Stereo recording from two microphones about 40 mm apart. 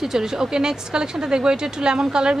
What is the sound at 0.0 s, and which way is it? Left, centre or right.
Speech, centre.